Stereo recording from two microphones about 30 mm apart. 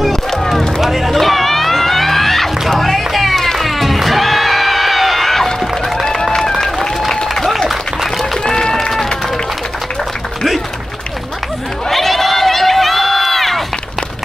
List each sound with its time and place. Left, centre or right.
0.1 s run: centre
0.7 s music: centre
7.5 s applause: centre
8.5 s run: left
11.9 s run: centre